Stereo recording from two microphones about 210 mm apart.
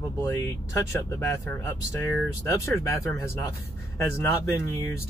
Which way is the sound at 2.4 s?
15° left (ahead or behind).